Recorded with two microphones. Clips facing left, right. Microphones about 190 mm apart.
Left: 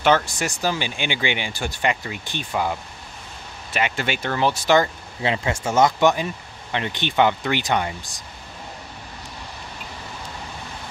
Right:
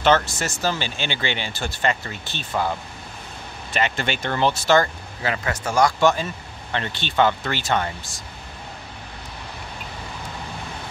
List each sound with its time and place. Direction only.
0.0 s speech: 10° left (ahead or behind)
3.7 s speech: 10° left (ahead or behind)